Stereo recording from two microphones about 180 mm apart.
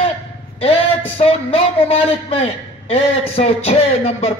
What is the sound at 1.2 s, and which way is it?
A man's voice, 35° left (ahead or behind).